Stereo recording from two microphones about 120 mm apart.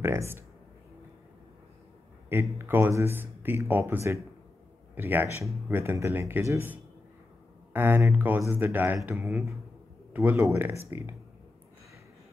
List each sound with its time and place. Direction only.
0.0 s speech: 20° right (ahead or behind)
2.6 s speech: 20° right (ahead or behind)
9.1 s speech: 5° right (ahead or behind)
10.1 s speech: 15° right (ahead or behind)